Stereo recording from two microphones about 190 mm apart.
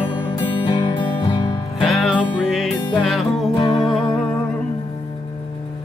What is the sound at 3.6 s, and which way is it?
Music, 20° left (ahead or behind).